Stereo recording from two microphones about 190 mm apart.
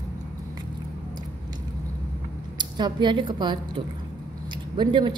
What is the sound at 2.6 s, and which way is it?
A woman's voice, 25° right (ahead or behind).